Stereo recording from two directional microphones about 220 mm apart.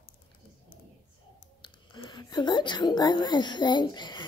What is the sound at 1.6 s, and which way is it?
Speech, 20° left (ahead or behind).